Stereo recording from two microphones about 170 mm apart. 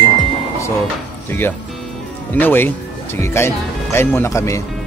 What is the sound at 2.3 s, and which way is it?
Speech, 10° left (ahead or behind).